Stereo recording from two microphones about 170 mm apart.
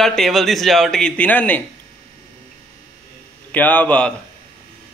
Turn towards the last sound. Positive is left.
turn(degrees=10)  # may be behind; listen again after turning